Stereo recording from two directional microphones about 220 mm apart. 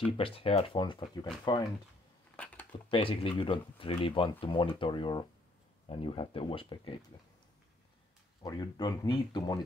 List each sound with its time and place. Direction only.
0.2 s speech: 25° left (ahead or behind)
2.3 s a sound: 5° left (ahead or behind)
2.9 s speech: 25° left (ahead or behind)
8.4 s speech: 20° left (ahead or behind)